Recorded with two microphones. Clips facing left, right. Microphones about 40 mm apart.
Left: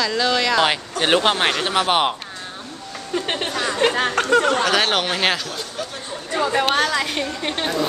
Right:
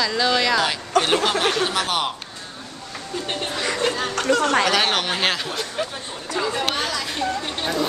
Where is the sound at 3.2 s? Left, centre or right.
Left.